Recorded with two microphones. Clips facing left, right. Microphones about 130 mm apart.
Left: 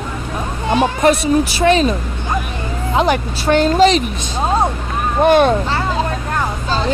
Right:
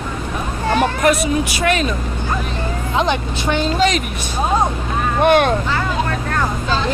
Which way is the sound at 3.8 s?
30° left (ahead or behind).